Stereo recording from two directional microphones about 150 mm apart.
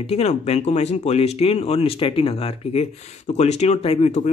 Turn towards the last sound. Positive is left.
turn(degrees=45)  # may be behind; listen again after turning